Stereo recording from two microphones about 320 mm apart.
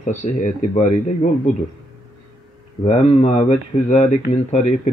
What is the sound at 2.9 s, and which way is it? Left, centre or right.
Speech, centre.